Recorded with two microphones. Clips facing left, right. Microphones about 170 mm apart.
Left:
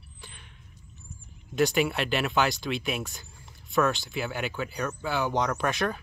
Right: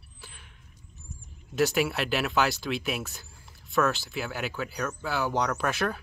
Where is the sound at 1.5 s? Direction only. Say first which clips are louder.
Left 1 dB; 5° right (ahead or behind).